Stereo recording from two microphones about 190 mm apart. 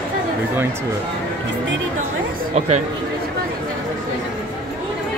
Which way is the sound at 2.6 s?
35° right (ahead or behind).